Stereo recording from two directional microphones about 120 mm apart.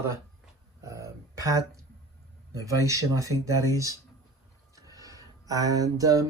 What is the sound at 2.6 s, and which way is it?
Speech, 25° right (ahead or behind).